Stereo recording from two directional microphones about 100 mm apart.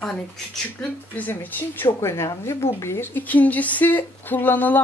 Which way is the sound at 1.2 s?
20° left (ahead or behind).